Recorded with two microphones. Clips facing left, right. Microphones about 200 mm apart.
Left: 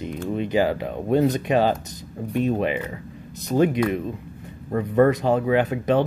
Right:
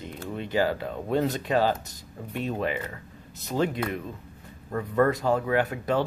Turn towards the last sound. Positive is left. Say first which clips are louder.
# left 5 dB
turn(degrees=20)  # may be behind; listen again after turning